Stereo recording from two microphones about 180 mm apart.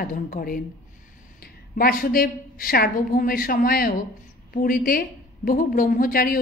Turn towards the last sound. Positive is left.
turn(degrees=55)  # may be behind; listen again after turning